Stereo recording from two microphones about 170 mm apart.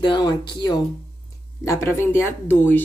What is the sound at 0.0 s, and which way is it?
Speech, 25° left (ahead or behind).